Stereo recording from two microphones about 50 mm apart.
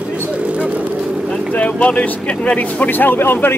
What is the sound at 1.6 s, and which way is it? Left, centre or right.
Speech, left.